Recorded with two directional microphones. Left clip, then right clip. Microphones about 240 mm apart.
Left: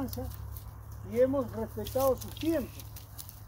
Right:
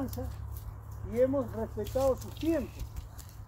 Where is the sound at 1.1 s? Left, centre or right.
Left.